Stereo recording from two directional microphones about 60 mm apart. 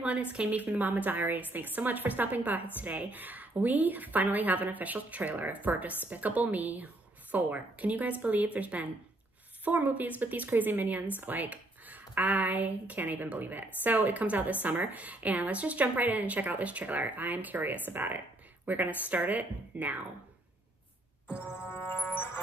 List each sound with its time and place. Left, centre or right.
0.0 s speech: right
21.3 s music: centre
21.6 s music: left